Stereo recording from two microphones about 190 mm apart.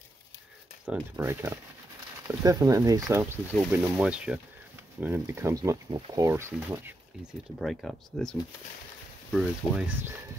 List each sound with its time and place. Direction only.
0.8 s speech: 10° right (ahead or behind)
7.5 s speech: centre (ahead or behind)